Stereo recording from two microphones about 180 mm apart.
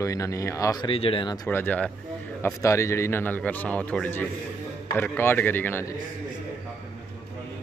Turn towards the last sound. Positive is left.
turn(degrees=10)  # may be behind; listen again after turning